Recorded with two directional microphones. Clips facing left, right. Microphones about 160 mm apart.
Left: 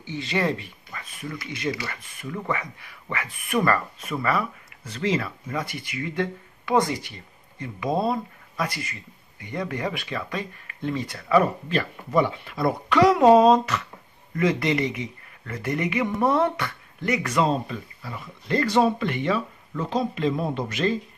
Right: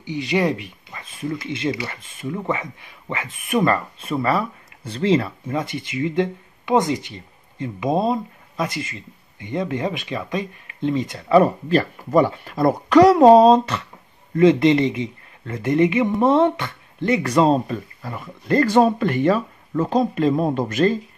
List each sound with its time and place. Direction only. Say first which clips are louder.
0.0 s speech: right 5 dB; 15° right (ahead or behind); by 21.0 s 45° right (ahead or behind)